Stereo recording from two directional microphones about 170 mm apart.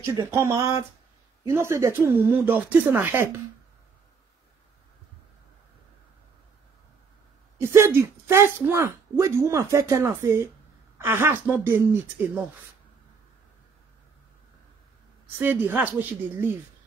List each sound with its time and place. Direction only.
0.0 s speech: 20° right (ahead or behind)
7.5 s speech: 15° right (ahead or behind)
15.3 s speech: 10° right (ahead or behind)